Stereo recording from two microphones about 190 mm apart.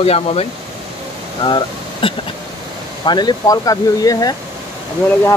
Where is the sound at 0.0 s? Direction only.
30° left (ahead or behind).